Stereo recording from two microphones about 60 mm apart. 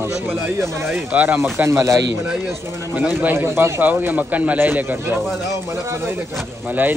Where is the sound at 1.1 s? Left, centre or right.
Right.